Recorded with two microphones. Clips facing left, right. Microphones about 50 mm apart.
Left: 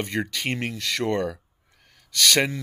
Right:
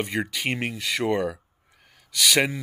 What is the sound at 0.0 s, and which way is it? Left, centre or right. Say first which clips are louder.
Speech: even; centre.